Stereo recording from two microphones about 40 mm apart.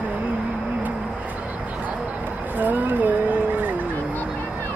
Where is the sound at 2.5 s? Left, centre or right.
Right.